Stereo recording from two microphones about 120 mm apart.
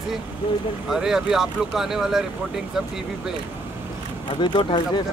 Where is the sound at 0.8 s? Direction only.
5° right (ahead or behind).